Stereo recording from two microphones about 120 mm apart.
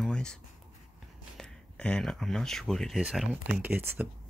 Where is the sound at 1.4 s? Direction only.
5° left (ahead or behind).